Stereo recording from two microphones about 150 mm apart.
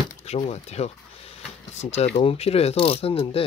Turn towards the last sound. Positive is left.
turn(degrees=40)  # may be behind; listen again after turning